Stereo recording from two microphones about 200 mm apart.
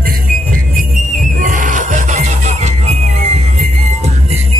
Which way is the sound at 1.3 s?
40° right (ahead or behind).